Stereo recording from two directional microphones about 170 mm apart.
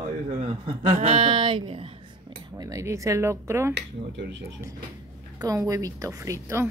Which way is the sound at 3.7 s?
90° right.